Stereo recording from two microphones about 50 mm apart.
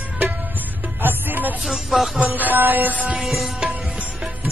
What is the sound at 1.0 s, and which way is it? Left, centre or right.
Music, right.